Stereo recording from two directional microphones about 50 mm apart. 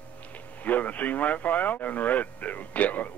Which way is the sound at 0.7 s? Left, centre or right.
Left.